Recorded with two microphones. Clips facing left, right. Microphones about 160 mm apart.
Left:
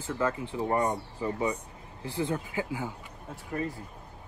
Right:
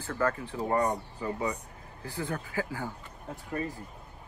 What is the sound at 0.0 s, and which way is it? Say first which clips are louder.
Speech: even; 15° left (ahead or behind).